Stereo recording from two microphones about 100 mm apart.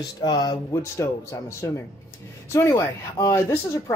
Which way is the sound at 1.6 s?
30° left (ahead or behind).